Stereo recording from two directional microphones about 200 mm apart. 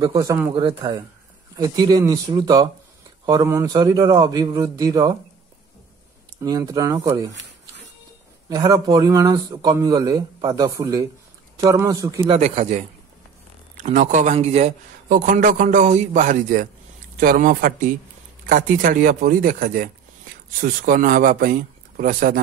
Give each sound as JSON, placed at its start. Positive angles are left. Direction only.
{"t": 0.0, "sound": "a man's voice", "side_deg": -15}
{"t": 6.4, "sound": "a man's voice", "side_deg": -20}
{"t": 8.5, "sound": "a man's voice", "side_deg": -20}
{"t": 12.3, "sound": "a man's voice", "side_deg": -30}
{"t": 13.8, "sound": "a man's voice", "side_deg": -40}